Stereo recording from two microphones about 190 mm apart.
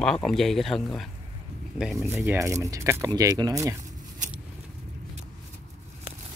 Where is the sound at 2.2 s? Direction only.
15° right (ahead or behind).